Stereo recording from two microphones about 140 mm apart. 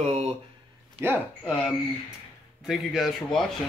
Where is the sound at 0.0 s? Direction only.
50° right (ahead or behind).